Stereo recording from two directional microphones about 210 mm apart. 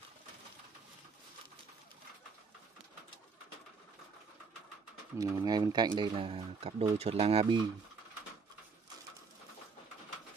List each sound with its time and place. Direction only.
5.2 s speech: 15° right (ahead or behind)